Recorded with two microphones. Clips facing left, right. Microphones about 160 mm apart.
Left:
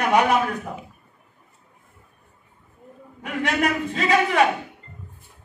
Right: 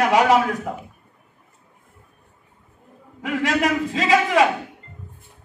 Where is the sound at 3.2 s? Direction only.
90° right.